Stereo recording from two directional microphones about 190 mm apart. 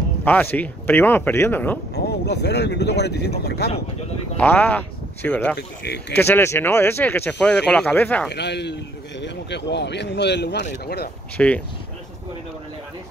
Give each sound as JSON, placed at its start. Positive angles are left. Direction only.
{"t": 0.2, "sound": "speech", "side_deg": 10}
{"t": 2.0, "sound": "speech", "side_deg": 60}
{"t": 4.4, "sound": "speech", "side_deg": 10}
{"t": 5.6, "sound": "speech", "side_deg": 65}
{"t": 6.1, "sound": "speech", "side_deg": 10}
{"t": 8.3, "sound": "speech", "side_deg": 65}
{"t": 11.3, "sound": "speech", "side_deg": 5}